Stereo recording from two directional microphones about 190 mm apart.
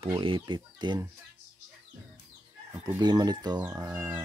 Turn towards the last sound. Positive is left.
turn(degrees=-10)  # may be behind; listen again after turning